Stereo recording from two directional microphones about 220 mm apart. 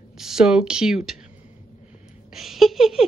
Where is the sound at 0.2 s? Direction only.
Centre (ahead or behind).